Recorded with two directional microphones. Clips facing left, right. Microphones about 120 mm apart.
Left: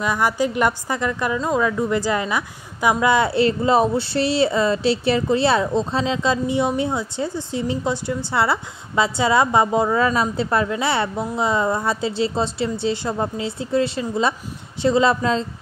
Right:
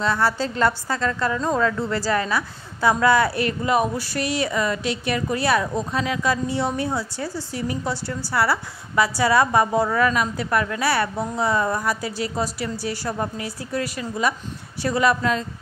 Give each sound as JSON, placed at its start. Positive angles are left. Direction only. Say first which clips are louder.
{"t": 0.0, "sound": "a woman's voice", "louder": "left 2 dB", "side_deg": 15}